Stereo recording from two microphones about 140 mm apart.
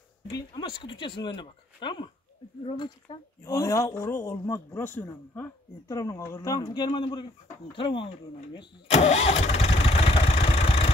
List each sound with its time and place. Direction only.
0.3 s speech: 30° left (ahead or behind)
3.4 s speech: 25° left (ahead or behind)
8.9 s vehicle: 50° left (ahead or behind)